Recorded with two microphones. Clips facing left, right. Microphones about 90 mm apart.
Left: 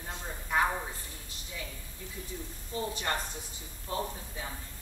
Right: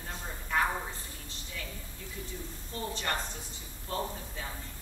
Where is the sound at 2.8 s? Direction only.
20° left (ahead or behind).